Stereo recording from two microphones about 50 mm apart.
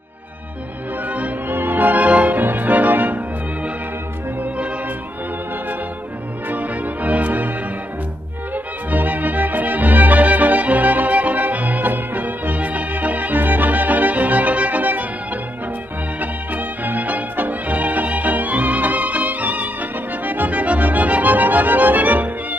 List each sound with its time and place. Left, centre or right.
1.0 s music: right
1.5 s music: right
6.5 s music: right
8.9 s music: right
16.2 s music: right